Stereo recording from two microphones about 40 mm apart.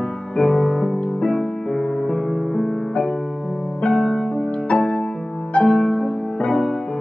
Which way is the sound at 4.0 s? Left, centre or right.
Left.